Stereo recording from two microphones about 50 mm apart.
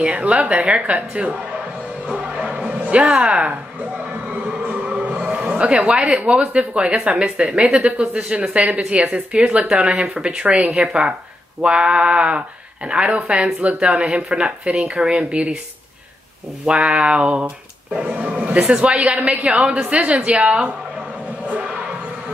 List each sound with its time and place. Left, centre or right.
0.0 s speech: right
2.0 s music: right
7.6 s speech: centre
8.1 s speech: right
16.6 s speech: right
18.0 s speech: right
18.7 s speech: right
21.5 s music: right